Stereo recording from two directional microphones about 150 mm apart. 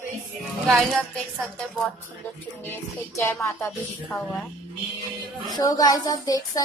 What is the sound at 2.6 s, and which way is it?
Music, 15° left (ahead or behind).